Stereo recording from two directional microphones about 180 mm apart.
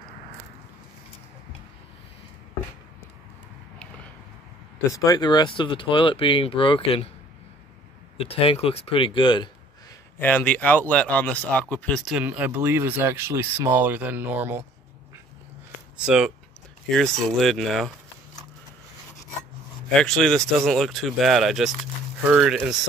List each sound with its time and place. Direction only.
4.9 s speech: 20° left (ahead or behind)
8.2 s speech: 30° left (ahead or behind)
10.1 s speech: 10° left (ahead or behind); by 14.6 s 10° right (ahead or behind)
16.1 s speech: 5° right (ahead or behind)
19.9 s speech: 5° left (ahead or behind)